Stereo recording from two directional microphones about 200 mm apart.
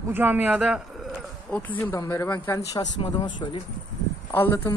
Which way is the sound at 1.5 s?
10° left (ahead or behind).